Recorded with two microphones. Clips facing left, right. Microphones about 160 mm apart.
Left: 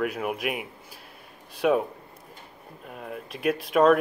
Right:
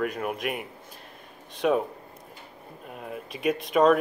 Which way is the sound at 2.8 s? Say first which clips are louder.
Even; centre (ahead or behind).